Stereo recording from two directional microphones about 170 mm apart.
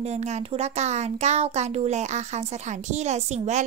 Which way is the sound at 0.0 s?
40° right (ahead or behind).